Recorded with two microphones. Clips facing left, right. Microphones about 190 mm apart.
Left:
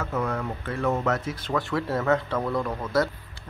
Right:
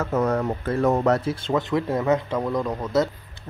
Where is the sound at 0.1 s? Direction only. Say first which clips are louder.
Right 7 dB; 40° right (ahead or behind).